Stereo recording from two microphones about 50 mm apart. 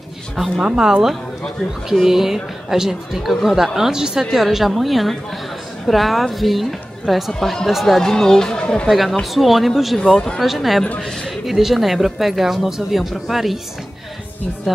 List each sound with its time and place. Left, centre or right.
0.4 s a woman's voice: centre
8.5 s speech: left
9.2 s speech: centre
10.0 s speech: centre
10.4 s speech: centre